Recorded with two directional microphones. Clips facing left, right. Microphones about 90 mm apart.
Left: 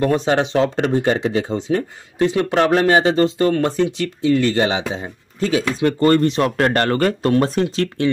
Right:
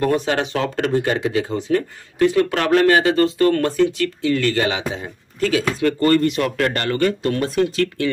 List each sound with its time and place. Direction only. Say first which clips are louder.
0.0 s speech: left 2 dB; 25° left (ahead or behind)